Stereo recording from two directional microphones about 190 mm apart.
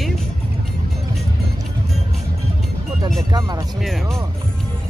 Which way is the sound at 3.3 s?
20° right (ahead or behind).